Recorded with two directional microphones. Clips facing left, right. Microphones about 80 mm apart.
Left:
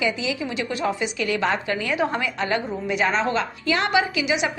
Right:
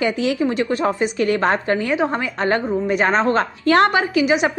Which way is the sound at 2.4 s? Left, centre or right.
Right.